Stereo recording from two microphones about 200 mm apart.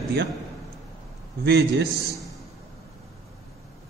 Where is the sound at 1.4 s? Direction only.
55° right (ahead or behind).